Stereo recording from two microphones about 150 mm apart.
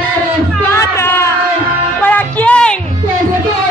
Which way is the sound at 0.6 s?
20° left (ahead or behind).